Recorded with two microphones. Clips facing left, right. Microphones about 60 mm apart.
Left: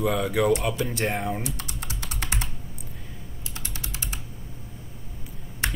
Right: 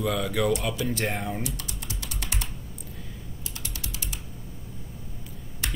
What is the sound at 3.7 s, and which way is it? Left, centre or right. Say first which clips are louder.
Typing: left 4 dB; left.